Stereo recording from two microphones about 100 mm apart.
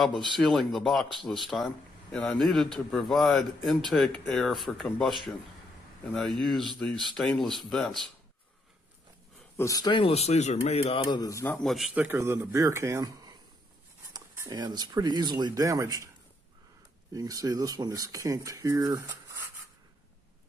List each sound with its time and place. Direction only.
0.4 s a man's voice: centre (ahead or behind)
6.1 s a man's voice: centre (ahead or behind)
9.6 s speech: 35° left (ahead or behind)
9.9 s speech: 80° left
11.0 s speech: 45° left (ahead or behind)
11.5 s a man's voice: centre (ahead or behind)
11.9 s a man's voice: 15° right (ahead or behind)
12.2 s speech: 30° right (ahead or behind)
17.1 s speech: 40° right (ahead or behind)